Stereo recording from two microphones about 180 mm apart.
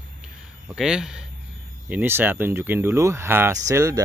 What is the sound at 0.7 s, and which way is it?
Speech, 5° right (ahead or behind).